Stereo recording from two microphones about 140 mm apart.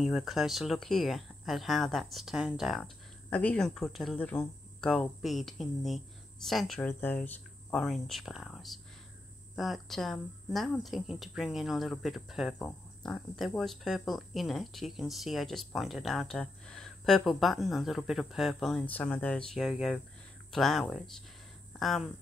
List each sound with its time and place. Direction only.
0.0 s speech: centre (ahead or behind)
3.3 s speech: 10° left (ahead or behind)
6.9 s speech: 15° left (ahead or behind)
7.7 s speech: centre (ahead or behind)